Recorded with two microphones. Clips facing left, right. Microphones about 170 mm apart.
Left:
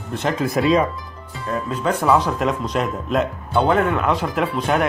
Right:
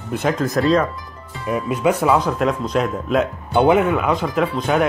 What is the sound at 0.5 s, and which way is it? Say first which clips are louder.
Speech: even; 10° left (ahead or behind).